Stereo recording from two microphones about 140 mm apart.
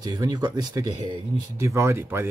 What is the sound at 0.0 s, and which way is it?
Speech, 25° right (ahead or behind).